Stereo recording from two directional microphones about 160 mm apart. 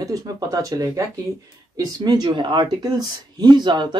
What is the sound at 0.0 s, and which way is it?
Speech, 20° right (ahead or behind).